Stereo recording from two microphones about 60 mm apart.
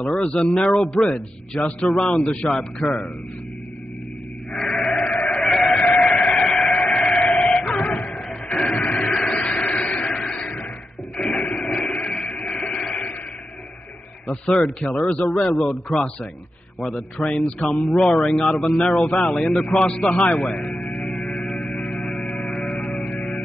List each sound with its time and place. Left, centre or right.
0.0 s a man's voice: centre
4.6 s sheep: centre
5.4 s music: centre
6.1 s a sound: centre
7.2 s sheep: centre
7.5 s music: centre
11.1 s printer: centre
11.6 s a sound: centre
14.3 s a man's voice: centre
15.4 s a man's voice: centre
20.3 s hum: centre